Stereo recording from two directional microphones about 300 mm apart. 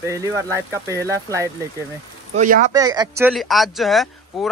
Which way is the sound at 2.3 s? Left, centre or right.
Right.